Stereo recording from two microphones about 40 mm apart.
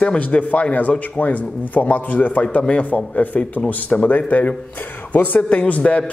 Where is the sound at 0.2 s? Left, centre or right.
Left.